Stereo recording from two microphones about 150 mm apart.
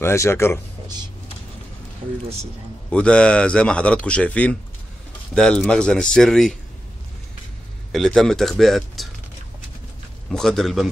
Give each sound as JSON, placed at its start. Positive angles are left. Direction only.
{"t": 0.0, "sound": "a man's voice", "side_deg": 20}
{"t": 2.9, "sound": "a man's voice", "side_deg": 5}
{"t": 7.9, "sound": "speech", "side_deg": 5}
{"t": 10.3, "sound": "speech", "side_deg": 5}